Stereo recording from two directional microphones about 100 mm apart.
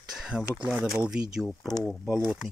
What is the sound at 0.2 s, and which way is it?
Speech, 5° right (ahead or behind).